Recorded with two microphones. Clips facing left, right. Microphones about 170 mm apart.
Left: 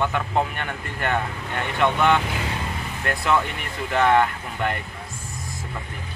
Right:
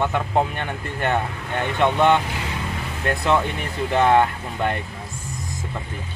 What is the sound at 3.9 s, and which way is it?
Speech, 25° right (ahead or behind).